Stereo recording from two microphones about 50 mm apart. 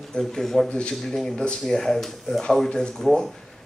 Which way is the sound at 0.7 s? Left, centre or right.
Left.